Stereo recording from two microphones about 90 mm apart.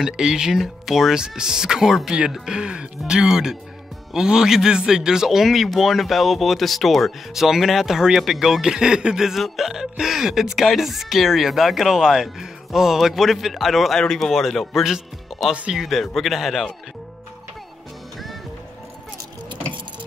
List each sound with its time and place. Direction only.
0.0 s a man's voice: 5° right (ahead or behind)
15.5 s speech: 15° right (ahead or behind)
15.8 s a man's voice: centre (ahead or behind)